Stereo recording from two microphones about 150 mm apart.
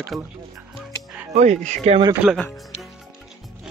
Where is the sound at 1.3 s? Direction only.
50° right (ahead or behind).